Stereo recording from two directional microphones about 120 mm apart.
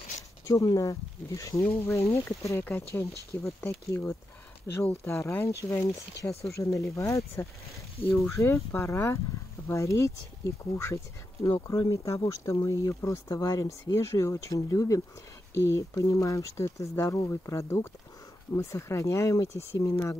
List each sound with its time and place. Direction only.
0.5 s speech: 30° left (ahead or behind)